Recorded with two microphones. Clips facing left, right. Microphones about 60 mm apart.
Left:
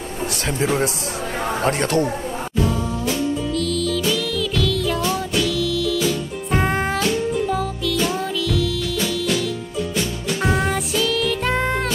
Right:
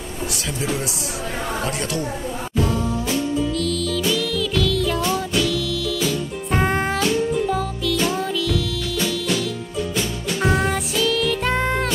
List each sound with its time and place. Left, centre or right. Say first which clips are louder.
1.6 s speech: left 9 dB; left
2.6 s music: even; centre
10.4 s music: right 1 dB; centre